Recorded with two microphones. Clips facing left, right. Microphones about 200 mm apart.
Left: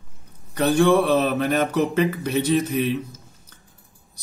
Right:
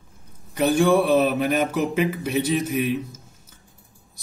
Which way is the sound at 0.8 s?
Centre (ahead or behind).